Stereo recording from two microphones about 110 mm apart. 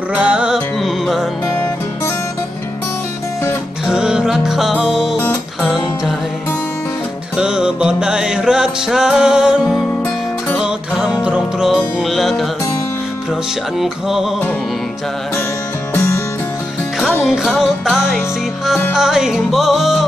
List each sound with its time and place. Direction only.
0.1 s music: 10° right (ahead or behind)
3.8 s music: 5° right (ahead or behind)
7.3 s music: 5° right (ahead or behind)
15.9 s music: 25° left (ahead or behind)
17.2 s music: 5° right (ahead or behind)